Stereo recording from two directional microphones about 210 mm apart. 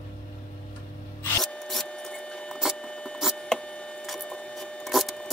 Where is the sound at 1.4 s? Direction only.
5° left (ahead or behind).